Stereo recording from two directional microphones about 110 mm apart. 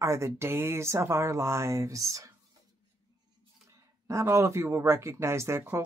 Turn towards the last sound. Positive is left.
turn(degrees=-25)  # may be behind; listen again after turning